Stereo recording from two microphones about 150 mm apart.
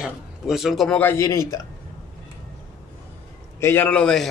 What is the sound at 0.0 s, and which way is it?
Speech, centre (ahead or behind).